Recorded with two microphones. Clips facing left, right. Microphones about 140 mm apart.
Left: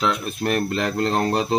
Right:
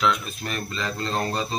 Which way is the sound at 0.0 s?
45° left (ahead or behind).